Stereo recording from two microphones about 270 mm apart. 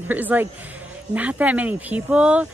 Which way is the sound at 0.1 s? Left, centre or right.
Centre.